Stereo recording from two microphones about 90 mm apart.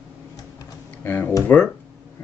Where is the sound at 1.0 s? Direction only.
25° left (ahead or behind).